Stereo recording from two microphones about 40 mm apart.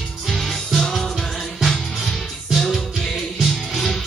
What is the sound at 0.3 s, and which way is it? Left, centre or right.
Music, centre.